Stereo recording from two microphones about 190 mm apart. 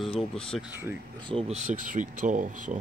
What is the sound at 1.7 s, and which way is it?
Speech, 45° right (ahead or behind).